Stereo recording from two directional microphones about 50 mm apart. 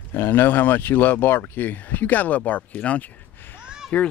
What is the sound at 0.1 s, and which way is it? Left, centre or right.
Speech, left.